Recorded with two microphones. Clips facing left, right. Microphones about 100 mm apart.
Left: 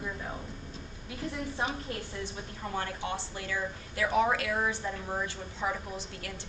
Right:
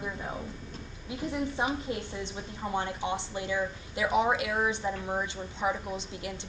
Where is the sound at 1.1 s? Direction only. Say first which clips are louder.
Right 4 dB; 20° right (ahead or behind).